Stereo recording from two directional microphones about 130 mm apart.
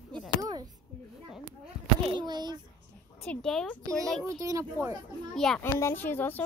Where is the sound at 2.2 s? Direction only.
35° right (ahead or behind).